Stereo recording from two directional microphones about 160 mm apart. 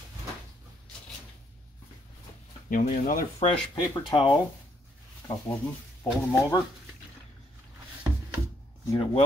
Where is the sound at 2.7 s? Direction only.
60° left (ahead or behind).